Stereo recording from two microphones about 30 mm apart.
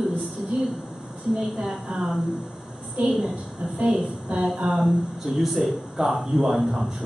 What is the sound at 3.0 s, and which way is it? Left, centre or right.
Speech, right.